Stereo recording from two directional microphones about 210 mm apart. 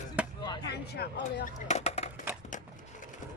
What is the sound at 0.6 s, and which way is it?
Speech, 50° left (ahead or behind).